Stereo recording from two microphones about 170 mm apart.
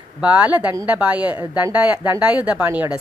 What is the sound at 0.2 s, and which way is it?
A woman's voice, 10° right (ahead or behind).